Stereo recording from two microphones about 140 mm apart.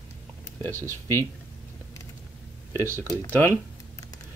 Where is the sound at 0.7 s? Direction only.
20° right (ahead or behind).